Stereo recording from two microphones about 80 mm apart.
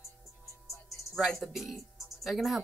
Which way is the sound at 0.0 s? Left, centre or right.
Left.